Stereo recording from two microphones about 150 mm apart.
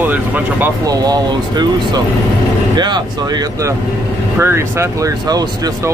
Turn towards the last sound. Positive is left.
turn(degrees=-25)  # may be behind; listen again after turning